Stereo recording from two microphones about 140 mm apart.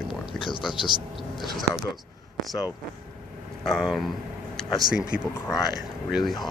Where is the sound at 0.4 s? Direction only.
35° left (ahead or behind).